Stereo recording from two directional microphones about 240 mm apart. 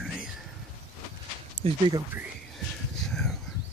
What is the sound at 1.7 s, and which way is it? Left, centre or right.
Speech, centre.